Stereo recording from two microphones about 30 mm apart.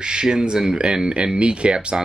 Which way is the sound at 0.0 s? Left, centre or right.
Right.